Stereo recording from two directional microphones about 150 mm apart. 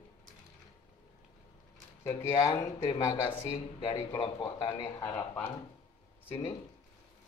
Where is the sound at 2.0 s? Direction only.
20° left (ahead or behind).